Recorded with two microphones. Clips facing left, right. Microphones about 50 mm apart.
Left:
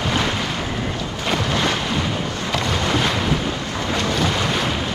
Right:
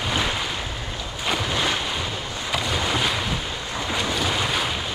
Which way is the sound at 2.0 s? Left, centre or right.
Left.